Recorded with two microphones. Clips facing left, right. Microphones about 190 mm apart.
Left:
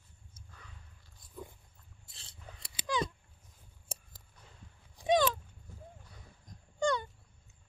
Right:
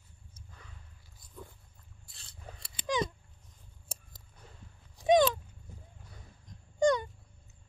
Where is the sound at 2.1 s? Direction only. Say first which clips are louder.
Right 3 dB; 20° left (ahead or behind).